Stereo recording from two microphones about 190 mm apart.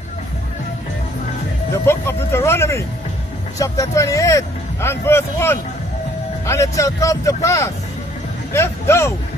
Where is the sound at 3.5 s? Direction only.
20° left (ahead or behind).